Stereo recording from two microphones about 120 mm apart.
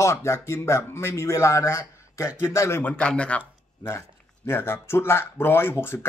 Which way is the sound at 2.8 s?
10° left (ahead or behind).